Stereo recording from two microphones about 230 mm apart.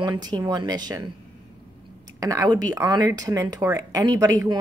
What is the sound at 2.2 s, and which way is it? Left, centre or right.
Speech, centre.